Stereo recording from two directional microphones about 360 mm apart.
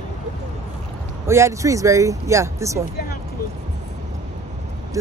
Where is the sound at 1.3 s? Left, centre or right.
Centre.